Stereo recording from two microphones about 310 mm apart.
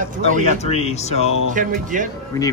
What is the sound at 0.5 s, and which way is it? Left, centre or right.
Speech, centre.